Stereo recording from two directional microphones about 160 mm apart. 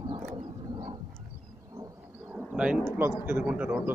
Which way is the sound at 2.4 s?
5° right (ahead or behind).